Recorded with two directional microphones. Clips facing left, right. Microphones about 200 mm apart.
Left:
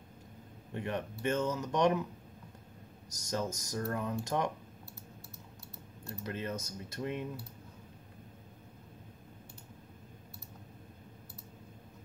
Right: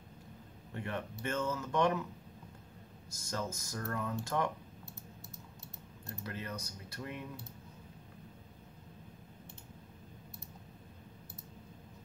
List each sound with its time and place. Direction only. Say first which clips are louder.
0.7 s speech: left 3 dB; 20° left (ahead or behind)
3.2 s speech: left 4 dB; 20° left (ahead or behind)
6.2 s speech: left 5 dB; 20° left (ahead or behind)